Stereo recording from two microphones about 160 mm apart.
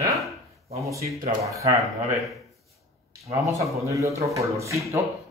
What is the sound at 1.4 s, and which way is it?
Speech, 20° right (ahead or behind).